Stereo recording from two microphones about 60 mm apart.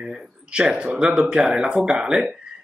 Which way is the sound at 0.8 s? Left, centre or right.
Centre.